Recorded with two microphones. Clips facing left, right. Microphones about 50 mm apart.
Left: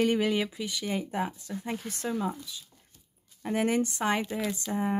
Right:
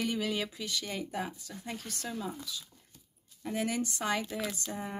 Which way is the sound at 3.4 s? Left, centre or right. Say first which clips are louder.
Left 6 dB; left.